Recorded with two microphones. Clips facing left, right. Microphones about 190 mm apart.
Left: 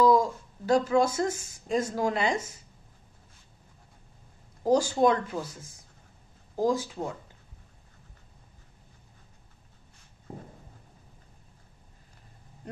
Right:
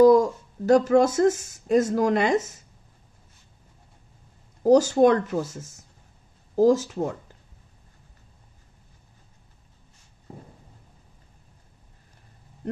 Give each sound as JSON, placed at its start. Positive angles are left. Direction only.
{"t": 0.0, "sound": "speech", "side_deg": -45}
{"t": 4.6, "sound": "speech", "side_deg": -45}